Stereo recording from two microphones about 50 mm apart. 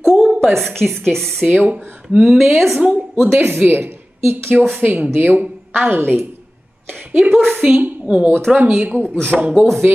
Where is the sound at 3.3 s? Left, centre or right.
Right.